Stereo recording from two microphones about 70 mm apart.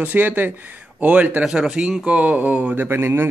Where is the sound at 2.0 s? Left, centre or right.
Right.